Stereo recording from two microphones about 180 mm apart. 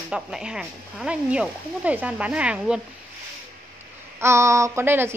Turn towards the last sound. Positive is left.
turn(degrees=-10)  # may be behind; listen again after turning